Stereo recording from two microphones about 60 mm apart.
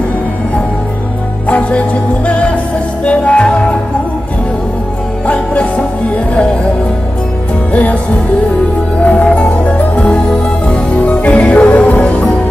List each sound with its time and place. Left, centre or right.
1.5 s music: left
3.1 s music: centre
5.2 s music: left
7.7 s music: left
9.0 s music: left